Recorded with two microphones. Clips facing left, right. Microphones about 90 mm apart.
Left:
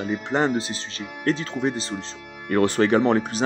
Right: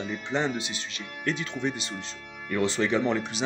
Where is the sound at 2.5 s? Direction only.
55° left (ahead or behind).